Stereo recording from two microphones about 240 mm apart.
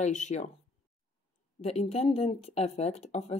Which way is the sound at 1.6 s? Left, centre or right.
Left.